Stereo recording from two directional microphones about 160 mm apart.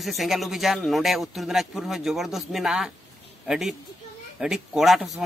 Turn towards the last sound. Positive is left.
turn(degrees=0)  # may be behind; listen again after turning